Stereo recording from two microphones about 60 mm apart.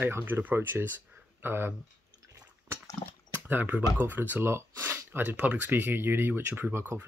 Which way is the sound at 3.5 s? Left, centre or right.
Right.